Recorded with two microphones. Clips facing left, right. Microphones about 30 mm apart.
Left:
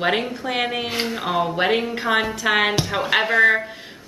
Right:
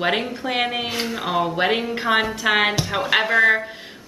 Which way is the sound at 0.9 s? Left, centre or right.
Centre.